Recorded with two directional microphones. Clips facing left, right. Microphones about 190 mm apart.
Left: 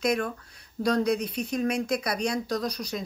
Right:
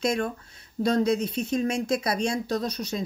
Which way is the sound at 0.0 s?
25° right (ahead or behind).